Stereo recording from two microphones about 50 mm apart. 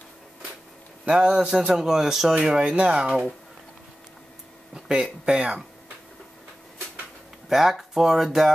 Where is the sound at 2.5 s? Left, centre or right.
Right.